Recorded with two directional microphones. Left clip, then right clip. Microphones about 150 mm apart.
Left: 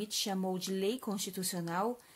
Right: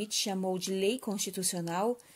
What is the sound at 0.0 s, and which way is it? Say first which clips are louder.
Speech: right 3 dB; 20° right (ahead or behind).